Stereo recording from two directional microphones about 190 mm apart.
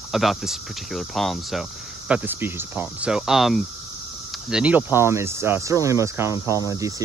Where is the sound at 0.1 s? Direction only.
Centre (ahead or behind).